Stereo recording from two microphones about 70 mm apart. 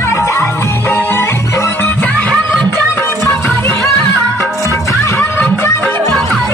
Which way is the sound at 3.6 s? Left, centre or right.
Left.